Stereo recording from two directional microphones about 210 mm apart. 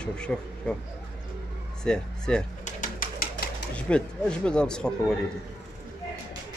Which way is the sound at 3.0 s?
40° left (ahead or behind).